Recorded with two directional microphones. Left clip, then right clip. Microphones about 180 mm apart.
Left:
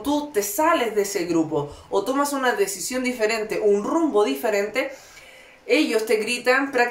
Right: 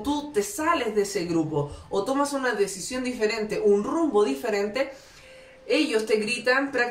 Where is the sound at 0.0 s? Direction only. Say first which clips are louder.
Left 3 dB; 35° left (ahead or behind).